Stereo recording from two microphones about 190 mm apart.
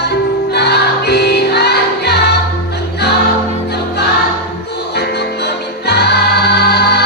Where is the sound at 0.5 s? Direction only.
60° left (ahead or behind).